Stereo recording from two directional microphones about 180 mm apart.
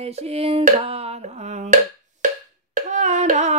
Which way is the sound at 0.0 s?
35° right (ahead or behind).